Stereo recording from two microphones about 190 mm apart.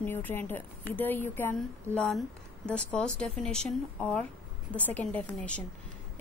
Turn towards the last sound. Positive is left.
turn(degrees=5)  # may be behind; listen again after turning